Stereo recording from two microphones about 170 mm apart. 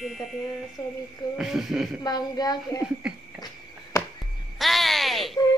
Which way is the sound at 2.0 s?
25° left (ahead or behind).